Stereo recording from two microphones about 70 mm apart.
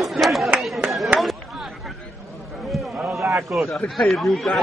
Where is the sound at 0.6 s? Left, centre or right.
Centre.